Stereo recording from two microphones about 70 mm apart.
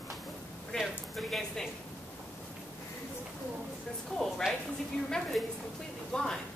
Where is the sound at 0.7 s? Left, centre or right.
Centre.